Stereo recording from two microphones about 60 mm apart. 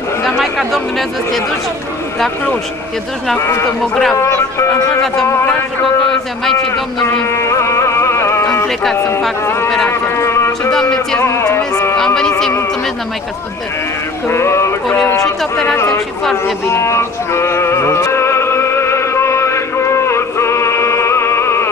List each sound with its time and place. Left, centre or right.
0.2 s speech: centre
3.3 s speech: left
3.8 s music: centre
4.2 s speech: left
7.2 s music: left
9.8 s a sound: left
10.7 s music: centre
14.3 s speech: left
16.6 s music: left